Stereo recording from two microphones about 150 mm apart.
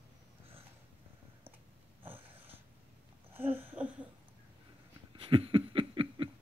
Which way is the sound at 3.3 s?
15° right (ahead or behind).